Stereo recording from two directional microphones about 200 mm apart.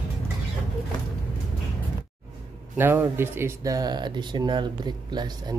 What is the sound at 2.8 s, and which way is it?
Speech, 10° right (ahead or behind).